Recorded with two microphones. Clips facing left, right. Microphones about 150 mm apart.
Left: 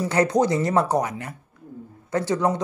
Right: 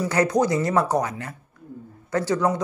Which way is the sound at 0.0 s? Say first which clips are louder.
Left 1 dB; 25° left (ahead or behind).